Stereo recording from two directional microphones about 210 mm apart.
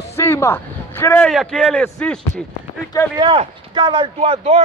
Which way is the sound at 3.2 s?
25° right (ahead or behind).